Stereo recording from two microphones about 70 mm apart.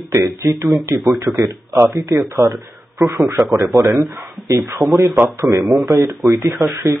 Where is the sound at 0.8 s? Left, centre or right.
Right.